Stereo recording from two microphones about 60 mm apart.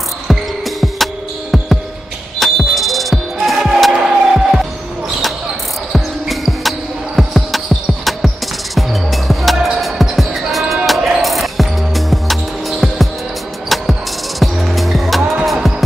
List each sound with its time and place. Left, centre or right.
0.3 s music: centre
5.9 s cricket: centre
7.2 s music: centre
14.4 s music: centre